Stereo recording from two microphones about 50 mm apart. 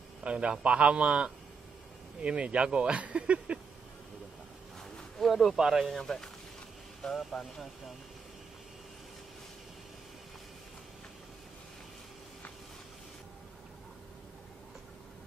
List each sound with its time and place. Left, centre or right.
0.2 s speech: right
5.2 s speech: centre
5.6 s speech: centre
5.9 s speech: centre